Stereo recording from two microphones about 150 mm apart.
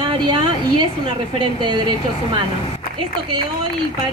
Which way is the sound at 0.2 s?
30° right (ahead or behind).